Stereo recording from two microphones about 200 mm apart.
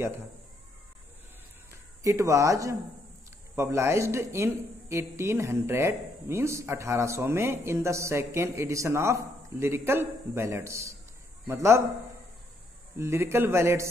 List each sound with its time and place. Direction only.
2.0 s speech: 15° right (ahead or behind)
12.9 s speech: 15° right (ahead or behind)